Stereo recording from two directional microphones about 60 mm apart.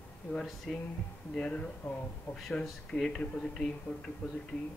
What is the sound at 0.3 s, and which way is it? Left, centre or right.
Speech, centre.